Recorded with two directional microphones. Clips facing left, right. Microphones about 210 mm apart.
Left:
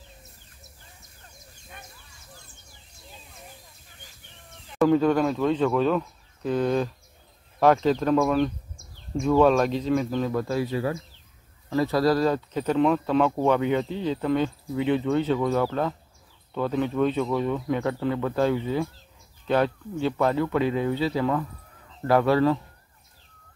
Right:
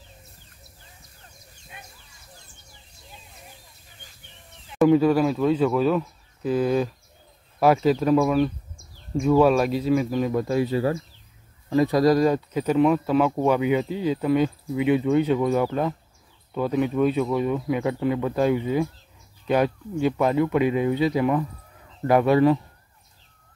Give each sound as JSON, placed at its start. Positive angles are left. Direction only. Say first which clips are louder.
{"t": 4.7, "sound": "speech", "louder": "right 3 dB", "side_deg": -10}
{"t": 11.7, "sound": "speech", "louder": "right 3 dB", "side_deg": -15}